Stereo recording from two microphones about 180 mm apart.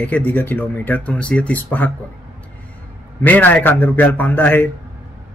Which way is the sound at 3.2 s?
10° left (ahead or behind).